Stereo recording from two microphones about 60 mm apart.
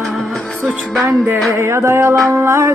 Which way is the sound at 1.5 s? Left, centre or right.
Right.